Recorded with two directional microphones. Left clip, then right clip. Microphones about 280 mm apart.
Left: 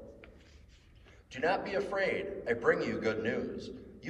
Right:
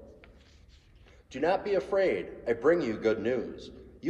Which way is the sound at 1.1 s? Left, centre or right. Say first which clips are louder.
Right 3 dB; right.